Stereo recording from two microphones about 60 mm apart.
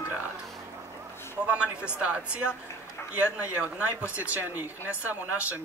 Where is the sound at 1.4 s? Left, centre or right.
Centre.